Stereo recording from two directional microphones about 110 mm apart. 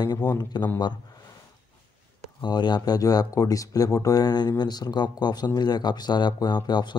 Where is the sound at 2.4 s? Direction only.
40° left (ahead or behind).